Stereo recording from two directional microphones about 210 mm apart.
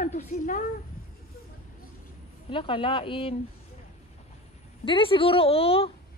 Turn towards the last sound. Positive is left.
turn(degrees=25)  # may be behind; listen again after turning